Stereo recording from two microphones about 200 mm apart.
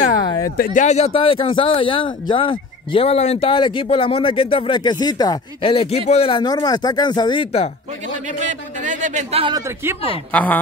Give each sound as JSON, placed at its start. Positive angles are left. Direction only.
{"t": 0.6, "sound": "speech", "side_deg": 35}
{"t": 8.3, "sound": "speech", "side_deg": -40}
{"t": 10.3, "sound": "speech", "side_deg": 10}